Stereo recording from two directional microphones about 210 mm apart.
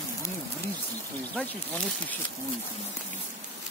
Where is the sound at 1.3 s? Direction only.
5° left (ahead or behind).